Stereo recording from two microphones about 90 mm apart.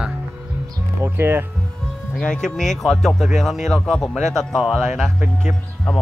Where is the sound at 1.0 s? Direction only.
25° right (ahead or behind).